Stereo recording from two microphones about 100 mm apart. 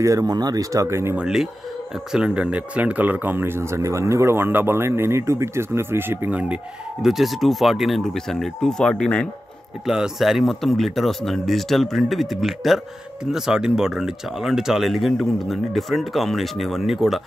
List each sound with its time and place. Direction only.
0.0 s speech: 35° right (ahead or behind)
1.1 s speech: 5° right (ahead or behind)
9.8 s speech: 5° right (ahead or behind)